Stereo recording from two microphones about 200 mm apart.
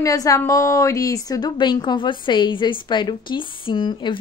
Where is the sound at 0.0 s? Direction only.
15° left (ahead or behind).